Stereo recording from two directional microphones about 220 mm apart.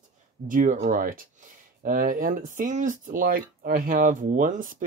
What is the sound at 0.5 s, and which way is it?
Speech, 35° right (ahead or behind).